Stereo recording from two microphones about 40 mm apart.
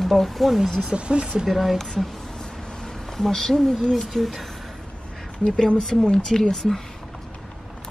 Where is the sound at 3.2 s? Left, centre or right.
Centre.